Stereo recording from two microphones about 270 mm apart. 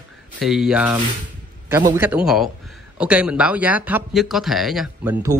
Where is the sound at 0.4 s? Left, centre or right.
Centre.